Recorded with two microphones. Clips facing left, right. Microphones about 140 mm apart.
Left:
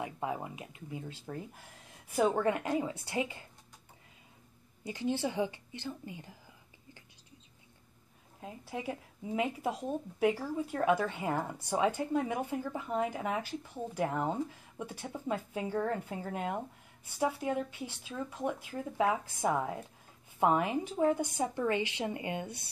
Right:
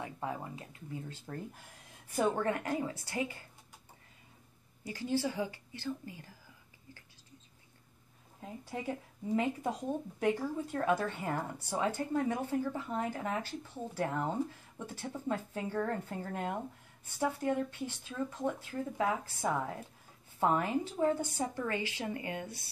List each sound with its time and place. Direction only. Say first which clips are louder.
0.0 s speech: left 3 dB; 15° left (ahead or behind)
4.8 s a woman's voice: left 1 dB; 20° left (ahead or behind)
8.4 s a woman's voice: left 1 dB; 5° left (ahead or behind)